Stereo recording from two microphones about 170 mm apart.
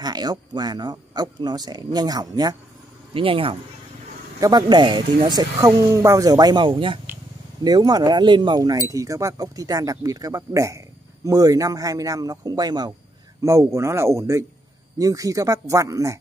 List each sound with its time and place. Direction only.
0.0 s speech: 25° right (ahead or behind)